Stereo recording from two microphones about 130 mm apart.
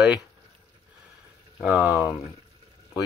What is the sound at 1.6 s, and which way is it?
Speech, 10° right (ahead or behind).